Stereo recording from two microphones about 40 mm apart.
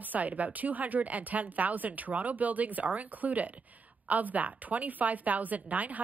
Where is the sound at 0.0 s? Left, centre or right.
Right.